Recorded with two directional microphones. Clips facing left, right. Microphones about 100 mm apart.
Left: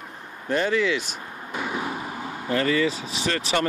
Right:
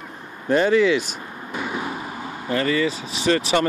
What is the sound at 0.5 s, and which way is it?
Speech, 25° right (ahead or behind).